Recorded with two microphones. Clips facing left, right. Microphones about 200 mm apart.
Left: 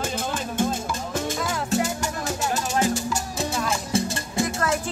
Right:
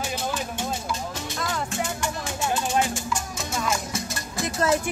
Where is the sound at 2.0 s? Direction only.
40° left (ahead or behind).